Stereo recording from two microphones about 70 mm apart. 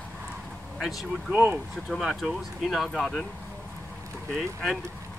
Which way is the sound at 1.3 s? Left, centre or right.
Right.